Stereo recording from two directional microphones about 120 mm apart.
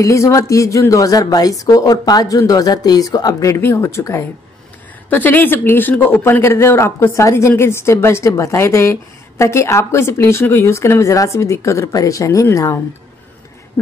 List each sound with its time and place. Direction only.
0.0 s speech: 25° left (ahead or behind)